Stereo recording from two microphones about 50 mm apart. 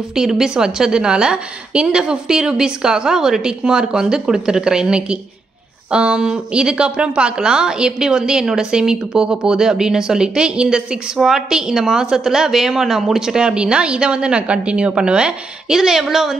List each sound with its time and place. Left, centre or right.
0.1 s a woman's voice: centre